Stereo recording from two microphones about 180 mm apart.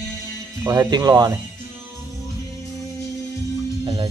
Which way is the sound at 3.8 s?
30° right (ahead or behind).